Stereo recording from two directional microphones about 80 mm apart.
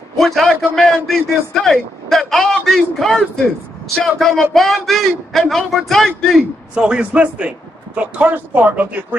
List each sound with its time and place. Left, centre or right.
0.2 s a man's voice: centre
6.7 s a man's voice: centre